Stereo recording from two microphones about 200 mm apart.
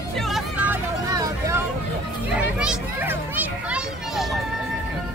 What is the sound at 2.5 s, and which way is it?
Children playing, 5° right (ahead or behind).